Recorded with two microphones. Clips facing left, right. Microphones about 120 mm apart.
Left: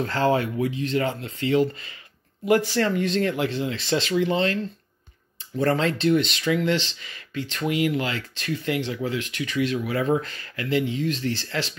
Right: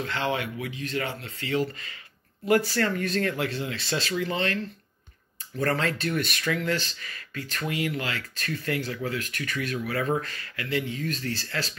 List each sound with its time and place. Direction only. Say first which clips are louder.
0.0 s speech: left 7 dB; 40° left (ahead or behind)
8.4 s speech: left 4 dB; 15° left (ahead or behind)